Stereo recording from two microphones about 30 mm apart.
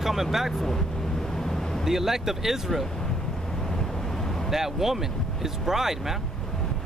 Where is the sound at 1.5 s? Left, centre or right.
Centre.